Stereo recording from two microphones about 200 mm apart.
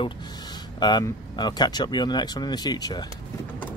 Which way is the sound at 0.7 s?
20° left (ahead or behind).